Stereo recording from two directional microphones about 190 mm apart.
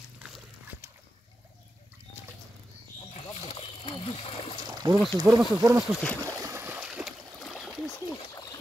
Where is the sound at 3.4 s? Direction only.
30° left (ahead or behind).